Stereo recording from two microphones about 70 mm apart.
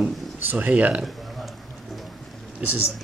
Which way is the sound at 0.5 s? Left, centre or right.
Right.